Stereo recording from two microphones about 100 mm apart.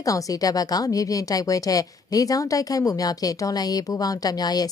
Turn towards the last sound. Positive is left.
turn(degrees=40)  # may be behind; listen again after turning